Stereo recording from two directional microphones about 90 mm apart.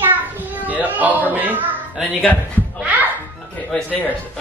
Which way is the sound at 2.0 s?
5° right (ahead or behind).